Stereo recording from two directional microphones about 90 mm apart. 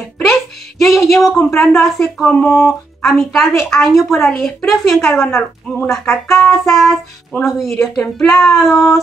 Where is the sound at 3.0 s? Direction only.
Centre (ahead or behind).